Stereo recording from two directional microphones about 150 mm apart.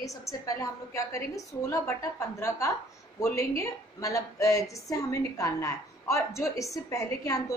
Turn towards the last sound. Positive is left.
turn(degrees=20)  # may be behind; listen again after turning